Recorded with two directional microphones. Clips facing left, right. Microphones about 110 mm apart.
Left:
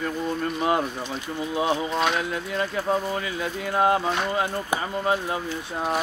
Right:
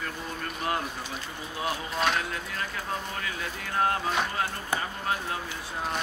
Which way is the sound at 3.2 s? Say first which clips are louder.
Left 6 dB; 20° left (ahead or behind).